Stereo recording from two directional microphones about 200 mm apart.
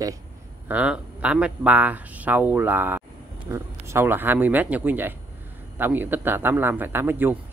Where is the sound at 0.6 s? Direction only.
5° right (ahead or behind).